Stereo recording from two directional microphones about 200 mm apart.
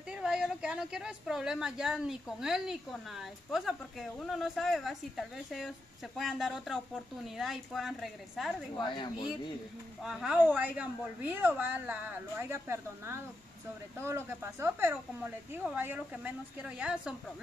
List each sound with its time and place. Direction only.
0.1 s a woman's voice: 5° right (ahead or behind)
8.7 s a woman's voice: 25° left (ahead or behind)
10.0 s a woman's voice: 5° right (ahead or behind)